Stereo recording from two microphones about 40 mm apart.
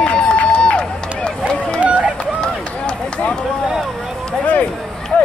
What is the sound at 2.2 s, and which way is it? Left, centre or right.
Run, left.